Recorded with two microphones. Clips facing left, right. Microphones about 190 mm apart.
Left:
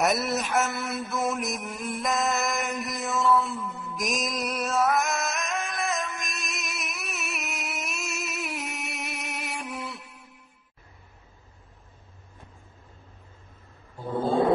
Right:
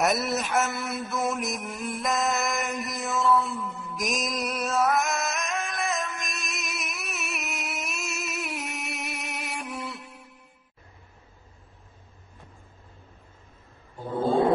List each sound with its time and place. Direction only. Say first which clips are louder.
0.0 s mantra: even; centre (ahead or behind)